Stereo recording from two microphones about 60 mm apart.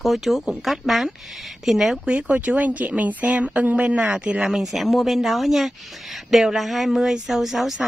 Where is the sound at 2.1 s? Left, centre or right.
Right.